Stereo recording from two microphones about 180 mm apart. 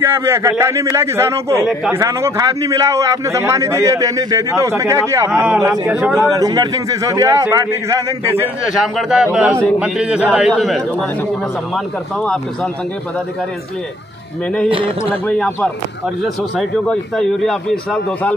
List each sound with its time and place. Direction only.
0.0 s a man's voice: 15° right (ahead or behind)
5.3 s a man's voice: 5° right (ahead or behind)
6.1 s a man's voice: 20° right (ahead or behind)
8.7 s a man's voice: centre (ahead or behind)
14.7 s a man's voice: 30° right (ahead or behind)
15.2 s a man's voice: 5° left (ahead or behind)